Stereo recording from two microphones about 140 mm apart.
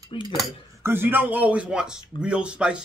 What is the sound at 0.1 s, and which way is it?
Speech, 35° left (ahead or behind).